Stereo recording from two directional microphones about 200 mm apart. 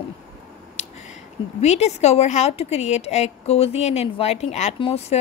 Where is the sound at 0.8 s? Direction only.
35° left (ahead or behind).